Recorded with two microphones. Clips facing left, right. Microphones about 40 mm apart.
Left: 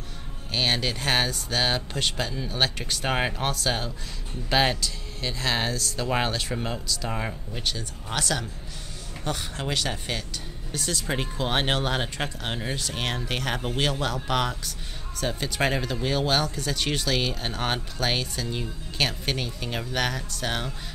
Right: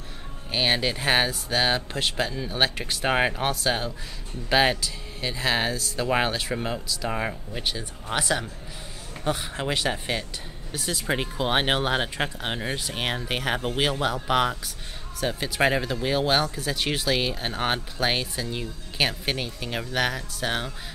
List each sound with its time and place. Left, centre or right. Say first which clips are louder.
0.5 s speech: right 2 dB; centre